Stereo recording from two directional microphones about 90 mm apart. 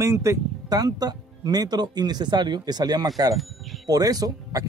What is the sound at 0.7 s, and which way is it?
Speech, 45° right (ahead or behind).